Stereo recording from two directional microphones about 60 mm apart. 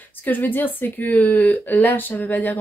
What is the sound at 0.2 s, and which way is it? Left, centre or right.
A woman's voice, left.